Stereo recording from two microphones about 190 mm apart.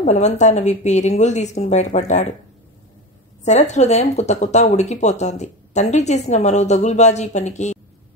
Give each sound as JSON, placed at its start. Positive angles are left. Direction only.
{"t": 0.0, "sound": "a woman's voice", "side_deg": 35}
{"t": 3.4, "sound": "a woman's voice", "side_deg": 35}